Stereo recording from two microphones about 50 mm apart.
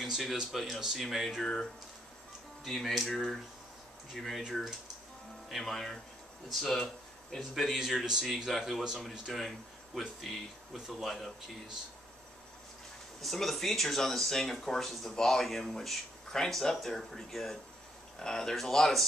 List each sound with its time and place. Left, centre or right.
0.0 s a sound: centre
0.5 s speech: centre
8.5 s speech: centre
13.2 s speech: centre